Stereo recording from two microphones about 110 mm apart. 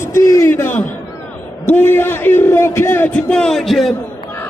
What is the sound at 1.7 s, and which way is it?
A man's voice, 20° left (ahead or behind).